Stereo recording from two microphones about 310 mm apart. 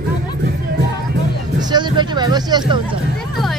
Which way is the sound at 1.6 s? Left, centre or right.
Centre.